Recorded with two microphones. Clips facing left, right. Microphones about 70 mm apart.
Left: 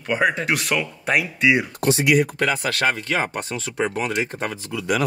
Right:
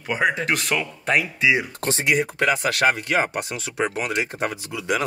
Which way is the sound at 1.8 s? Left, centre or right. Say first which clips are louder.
Left 6 dB; right.